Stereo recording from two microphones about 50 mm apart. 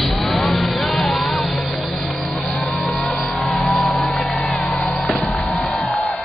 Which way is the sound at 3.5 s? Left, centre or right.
Centre.